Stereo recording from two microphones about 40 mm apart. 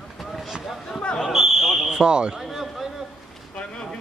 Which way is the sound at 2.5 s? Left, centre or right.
Centre.